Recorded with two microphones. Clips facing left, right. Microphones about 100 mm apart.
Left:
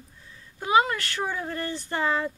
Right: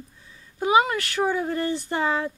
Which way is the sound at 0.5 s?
15° right (ahead or behind).